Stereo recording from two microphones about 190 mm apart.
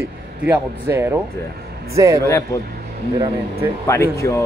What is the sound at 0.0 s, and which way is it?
A man's voice, 10° right (ahead or behind).